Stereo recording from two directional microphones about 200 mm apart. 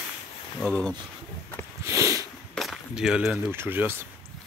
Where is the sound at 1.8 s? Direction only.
15° right (ahead or behind).